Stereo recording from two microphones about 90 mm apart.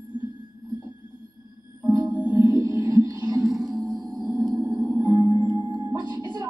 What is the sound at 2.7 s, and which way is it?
Music, 60° left (ahead or behind).